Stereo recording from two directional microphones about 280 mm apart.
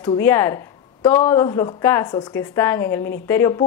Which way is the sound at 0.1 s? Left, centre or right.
Centre.